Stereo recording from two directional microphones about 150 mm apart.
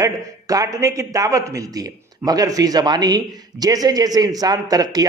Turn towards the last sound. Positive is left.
turn(degrees=-25)  # may be behind; listen again after turning